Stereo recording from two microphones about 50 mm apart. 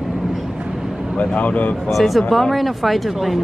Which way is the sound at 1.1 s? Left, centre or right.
Left.